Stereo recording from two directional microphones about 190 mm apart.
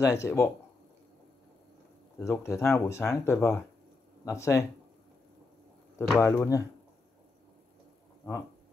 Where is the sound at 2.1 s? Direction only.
15° left (ahead or behind).